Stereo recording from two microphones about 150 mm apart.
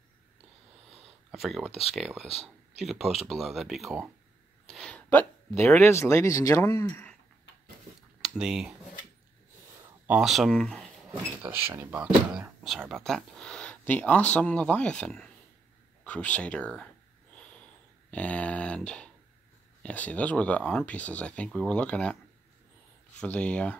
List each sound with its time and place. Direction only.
1.3 s speech: centre (ahead or behind)
4.6 s a sound: 5° left (ahead or behind)
5.8 s speech: 15° left (ahead or behind)
8.2 s speech: 5° right (ahead or behind)
10.0 s speech: 5° right (ahead or behind)
11.4 s speech: 15° right (ahead or behind); by 16.9 s 5° left (ahead or behind)
18.1 s speech: 10° left (ahead or behind)
23.1 s speech: 10° left (ahead or behind)